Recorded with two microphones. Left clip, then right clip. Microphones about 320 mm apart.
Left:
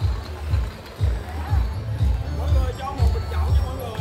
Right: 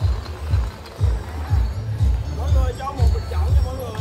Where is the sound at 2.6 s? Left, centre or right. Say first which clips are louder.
Right 3 dB; centre.